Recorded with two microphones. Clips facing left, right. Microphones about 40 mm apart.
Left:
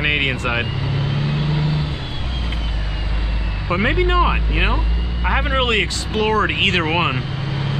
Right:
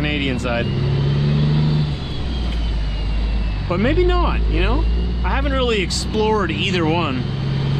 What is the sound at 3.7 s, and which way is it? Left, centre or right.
Speech, left.